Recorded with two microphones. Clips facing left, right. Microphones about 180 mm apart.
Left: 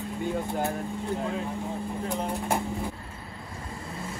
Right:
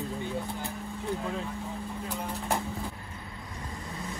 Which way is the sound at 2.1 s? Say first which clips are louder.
Left 3 dB; 15° left (ahead or behind).